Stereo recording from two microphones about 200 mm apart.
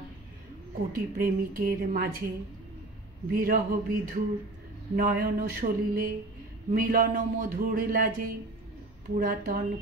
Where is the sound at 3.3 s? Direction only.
45° right (ahead or behind).